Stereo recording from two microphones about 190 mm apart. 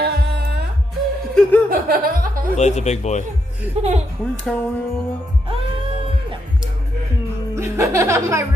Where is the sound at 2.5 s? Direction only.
35° left (ahead or behind).